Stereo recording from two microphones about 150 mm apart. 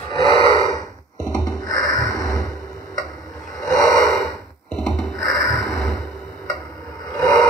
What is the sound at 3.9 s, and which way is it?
Gasp, 5° left (ahead or behind).